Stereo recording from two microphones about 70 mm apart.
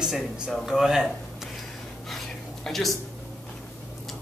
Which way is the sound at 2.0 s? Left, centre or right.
Centre.